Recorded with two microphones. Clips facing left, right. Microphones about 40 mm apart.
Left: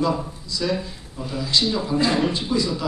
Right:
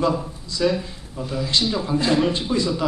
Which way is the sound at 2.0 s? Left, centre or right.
Centre.